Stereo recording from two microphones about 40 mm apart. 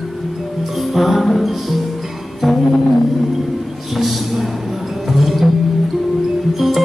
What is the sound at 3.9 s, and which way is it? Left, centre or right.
Music, centre.